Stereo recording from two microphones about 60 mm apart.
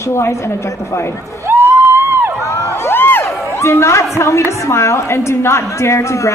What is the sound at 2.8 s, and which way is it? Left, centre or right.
A woman's voice, left.